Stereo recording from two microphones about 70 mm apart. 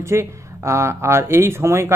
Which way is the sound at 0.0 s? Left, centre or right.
Right.